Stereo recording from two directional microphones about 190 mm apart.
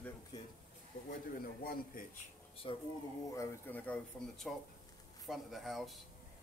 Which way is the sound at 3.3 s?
10° left (ahead or behind).